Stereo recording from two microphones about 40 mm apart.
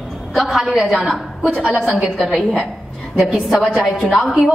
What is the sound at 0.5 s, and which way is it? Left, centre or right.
A woman's voice, centre.